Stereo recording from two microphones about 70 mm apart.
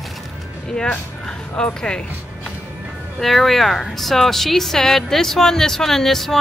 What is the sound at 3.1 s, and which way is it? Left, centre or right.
Speech, centre.